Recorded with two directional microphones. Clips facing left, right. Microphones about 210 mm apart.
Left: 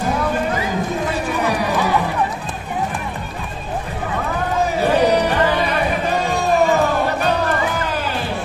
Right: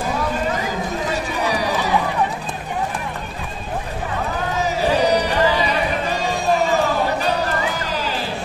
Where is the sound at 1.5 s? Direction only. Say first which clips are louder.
Even; 55° left (ahead or behind).